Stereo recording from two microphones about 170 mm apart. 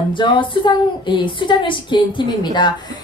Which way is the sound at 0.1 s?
30° left (ahead or behind).